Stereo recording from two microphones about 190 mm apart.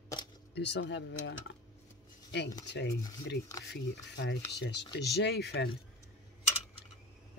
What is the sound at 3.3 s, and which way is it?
Speech, 65° left (ahead or behind).